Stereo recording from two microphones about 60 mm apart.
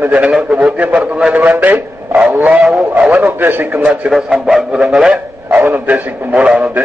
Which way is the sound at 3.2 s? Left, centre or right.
Right.